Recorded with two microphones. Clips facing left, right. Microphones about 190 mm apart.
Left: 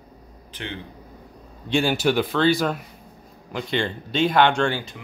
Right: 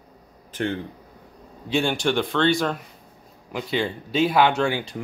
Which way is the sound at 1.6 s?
Centre (ahead or behind).